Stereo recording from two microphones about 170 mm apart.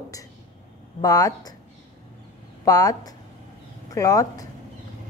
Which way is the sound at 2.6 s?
20° left (ahead or behind).